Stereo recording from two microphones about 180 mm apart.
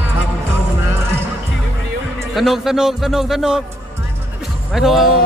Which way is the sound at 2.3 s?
Centre (ahead or behind).